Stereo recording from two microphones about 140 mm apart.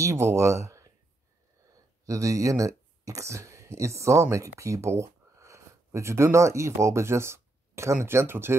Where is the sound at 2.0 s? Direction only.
25° right (ahead or behind).